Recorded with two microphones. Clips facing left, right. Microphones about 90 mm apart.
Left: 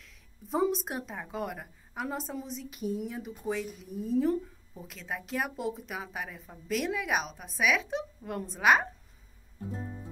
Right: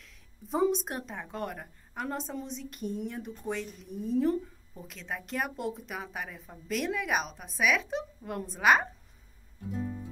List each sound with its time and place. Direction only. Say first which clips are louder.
0.0 s speech: right 1 dB; centre (ahead or behind)
9.6 s music: right 3 dB; 35° left (ahead or behind)